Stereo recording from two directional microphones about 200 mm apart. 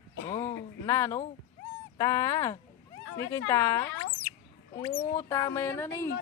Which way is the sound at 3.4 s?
15° left (ahead or behind).